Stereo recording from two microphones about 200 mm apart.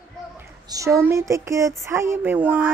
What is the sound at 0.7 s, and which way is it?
Speech, 15° right (ahead or behind).